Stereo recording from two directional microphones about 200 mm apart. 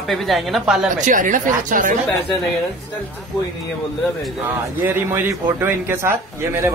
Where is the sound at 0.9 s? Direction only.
40° right (ahead or behind).